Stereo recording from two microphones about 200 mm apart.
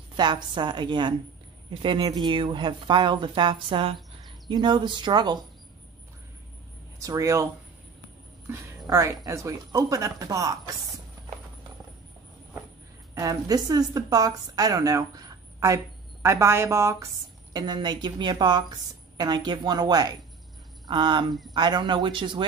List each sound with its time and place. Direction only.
0.1 s a woman's voice: 20° right (ahead or behind)
7.0 s speech: 15° right (ahead or behind)
8.5 s speech: 15° right (ahead or behind)
13.1 s a woman's voice: 15° right (ahead or behind)